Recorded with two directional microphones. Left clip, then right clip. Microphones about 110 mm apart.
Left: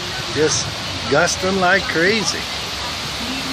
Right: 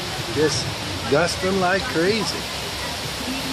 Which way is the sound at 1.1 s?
15° left (ahead or behind).